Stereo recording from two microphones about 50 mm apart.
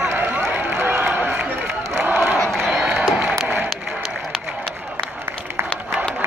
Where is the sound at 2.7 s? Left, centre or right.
Right.